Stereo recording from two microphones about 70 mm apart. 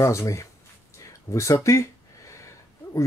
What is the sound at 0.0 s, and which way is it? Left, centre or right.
Speech, left.